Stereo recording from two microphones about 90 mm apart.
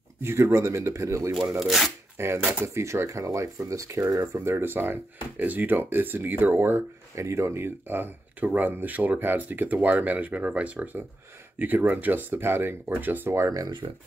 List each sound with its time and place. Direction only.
0.2 s speech: 30° right (ahead or behind)
1.6 s speech: centre (ahead or behind)
2.1 s speech: 30° right (ahead or behind)
13.5 s speech: 45° right (ahead or behind)